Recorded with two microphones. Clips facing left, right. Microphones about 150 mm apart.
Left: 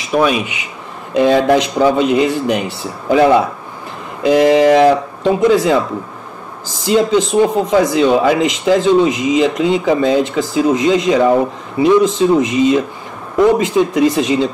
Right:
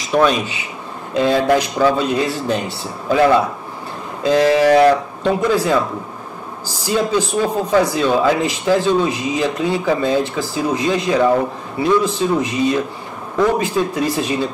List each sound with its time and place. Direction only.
0.1 s speech: 10° left (ahead or behind)
6.8 s speech: 20° left (ahead or behind)